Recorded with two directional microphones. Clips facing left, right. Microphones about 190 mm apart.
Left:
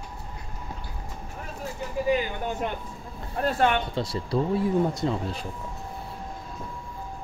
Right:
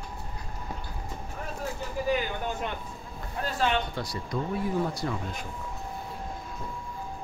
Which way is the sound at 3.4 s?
55° left (ahead or behind).